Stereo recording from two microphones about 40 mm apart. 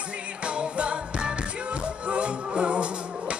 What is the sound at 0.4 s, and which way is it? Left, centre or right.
Music, right.